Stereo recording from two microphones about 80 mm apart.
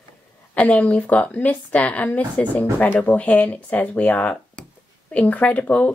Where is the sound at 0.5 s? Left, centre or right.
Centre.